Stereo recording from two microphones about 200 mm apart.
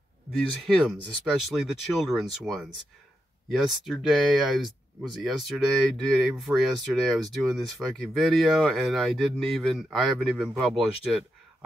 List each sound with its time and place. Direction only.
0.6 s speech: centre (ahead or behind)